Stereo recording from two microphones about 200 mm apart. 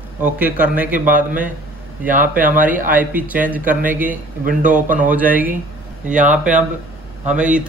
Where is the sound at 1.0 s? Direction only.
40° right (ahead or behind).